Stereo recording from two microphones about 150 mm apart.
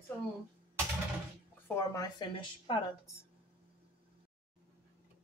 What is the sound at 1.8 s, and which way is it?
A woman's voice, 25° left (ahead or behind).